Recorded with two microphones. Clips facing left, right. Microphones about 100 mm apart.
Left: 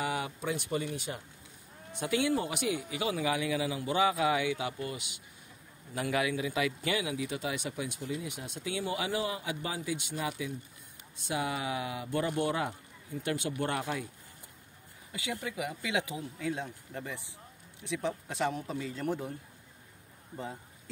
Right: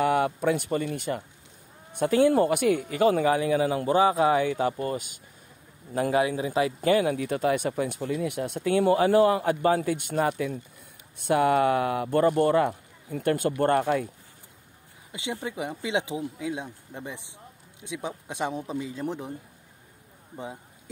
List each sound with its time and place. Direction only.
0.0 s a man's voice: 55° right (ahead or behind)
15.1 s speech: 25° right (ahead or behind)
20.3 s speech: 15° right (ahead or behind)